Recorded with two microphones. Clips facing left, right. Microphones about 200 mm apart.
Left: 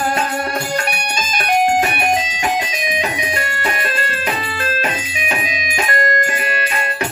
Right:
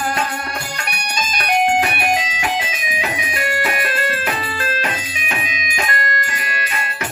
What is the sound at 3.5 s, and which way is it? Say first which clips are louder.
Music: right 1 dB; 5° right (ahead or behind).